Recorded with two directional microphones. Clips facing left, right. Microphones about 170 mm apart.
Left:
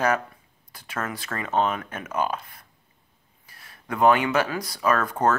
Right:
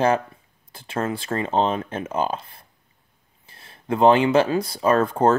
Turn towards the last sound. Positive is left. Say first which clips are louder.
# right 4 dB
turn(degrees=-30)  # may be behind; listen again after turning